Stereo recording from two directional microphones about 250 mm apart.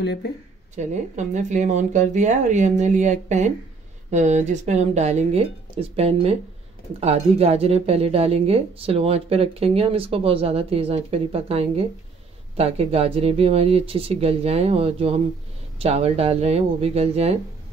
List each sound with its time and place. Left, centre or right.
0.0 s speech: left
0.7 s speech: right